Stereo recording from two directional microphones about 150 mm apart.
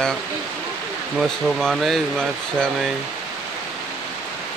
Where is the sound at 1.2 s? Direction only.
Centre (ahead or behind).